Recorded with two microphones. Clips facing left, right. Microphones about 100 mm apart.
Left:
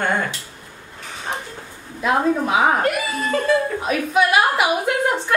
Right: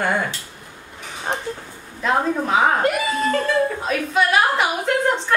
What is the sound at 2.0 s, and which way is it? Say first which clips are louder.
Child singing: left 2 dB; 10° left (ahead or behind).